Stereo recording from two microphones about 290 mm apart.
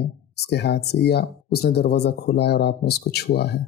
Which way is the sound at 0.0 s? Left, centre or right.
Left.